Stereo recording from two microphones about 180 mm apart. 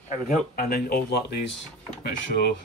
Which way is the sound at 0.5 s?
60° left (ahead or behind).